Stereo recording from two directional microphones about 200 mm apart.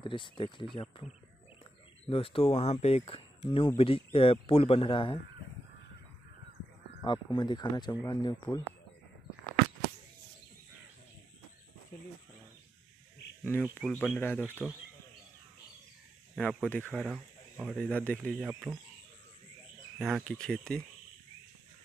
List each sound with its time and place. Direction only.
0.0 s speech: 25° left (ahead or behind)
2.0 s speech: 30° left (ahead or behind)
7.1 s speech: 20° left (ahead or behind)
13.4 s speech: 5° left (ahead or behind)
14.4 s speech: 5° right (ahead or behind)
16.3 s speech: 5° left (ahead or behind)
20.0 s speech: centre (ahead or behind)